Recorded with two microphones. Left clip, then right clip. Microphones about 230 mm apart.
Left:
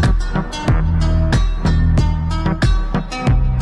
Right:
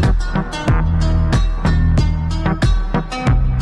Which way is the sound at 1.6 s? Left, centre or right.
Centre.